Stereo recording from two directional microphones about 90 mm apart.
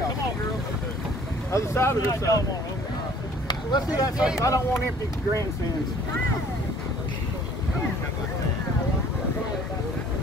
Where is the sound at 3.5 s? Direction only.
55° left (ahead or behind).